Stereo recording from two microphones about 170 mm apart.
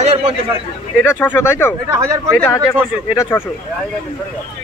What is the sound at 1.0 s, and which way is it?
Speech, 15° left (ahead or behind).